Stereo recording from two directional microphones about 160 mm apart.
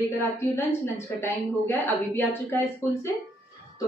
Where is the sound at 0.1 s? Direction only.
15° left (ahead or behind).